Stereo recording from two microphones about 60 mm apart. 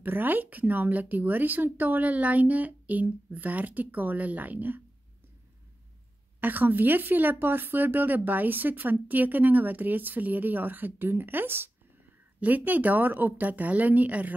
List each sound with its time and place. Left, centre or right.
0.0 s a woman's voice: right
6.4 s a woman's voice: right